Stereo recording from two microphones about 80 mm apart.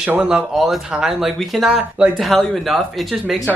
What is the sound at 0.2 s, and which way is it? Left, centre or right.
Speech, centre.